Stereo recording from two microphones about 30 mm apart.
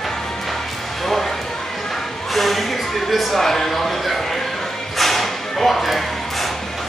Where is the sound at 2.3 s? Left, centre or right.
Centre.